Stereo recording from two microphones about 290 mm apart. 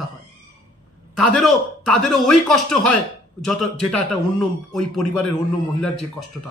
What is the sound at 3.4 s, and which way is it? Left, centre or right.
A man's voice, centre.